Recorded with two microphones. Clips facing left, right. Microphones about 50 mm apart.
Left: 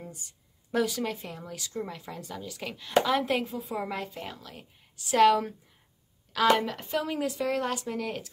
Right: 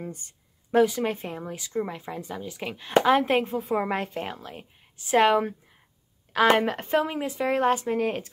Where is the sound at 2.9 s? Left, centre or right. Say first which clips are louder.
Right 5 dB; right.